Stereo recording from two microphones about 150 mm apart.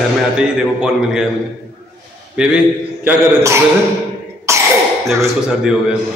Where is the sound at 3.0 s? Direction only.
20° right (ahead or behind).